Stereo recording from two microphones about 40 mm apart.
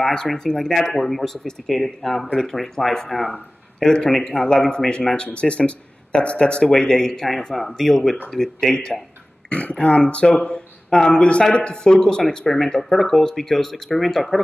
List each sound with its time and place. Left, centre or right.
0.6 s speech: centre
3.8 s speech: centre
7.5 s speech: centre
9.5 s speech: left
10.4 s a sound: left
11.0 s speech: centre